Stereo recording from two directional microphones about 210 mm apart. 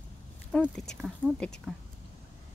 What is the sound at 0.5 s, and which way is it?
Speech, centre (ahead or behind).